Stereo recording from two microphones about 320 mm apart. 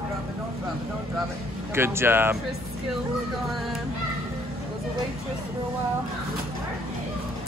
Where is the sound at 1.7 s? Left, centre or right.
Centre.